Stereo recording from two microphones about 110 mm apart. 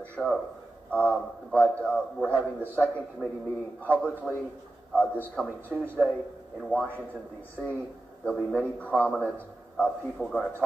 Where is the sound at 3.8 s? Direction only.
10° left (ahead or behind).